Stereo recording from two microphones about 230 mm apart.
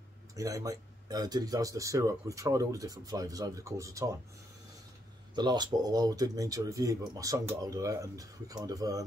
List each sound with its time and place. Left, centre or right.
0.4 s speech: centre
5.3 s speech: centre